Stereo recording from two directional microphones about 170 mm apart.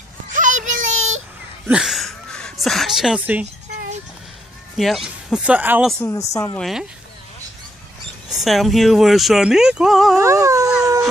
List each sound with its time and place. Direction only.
0.3 s child singing: 50° right (ahead or behind)
1.7 s speech: centre (ahead or behind)
4.7 s speech: centre (ahead or behind)
5.9 s a woman's voice: 15° left (ahead or behind)
6.6 s speech: 5° right (ahead or behind)
8.3 s speech: centre (ahead or behind)
10.1 s dog: 20° right (ahead or behind)